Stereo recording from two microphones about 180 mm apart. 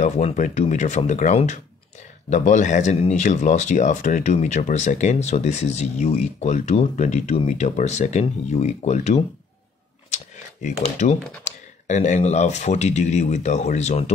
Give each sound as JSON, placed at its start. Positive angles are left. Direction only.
{"t": 0.0, "sound": "speech", "side_deg": 40}